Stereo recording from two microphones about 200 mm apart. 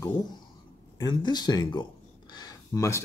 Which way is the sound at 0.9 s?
20° left (ahead or behind).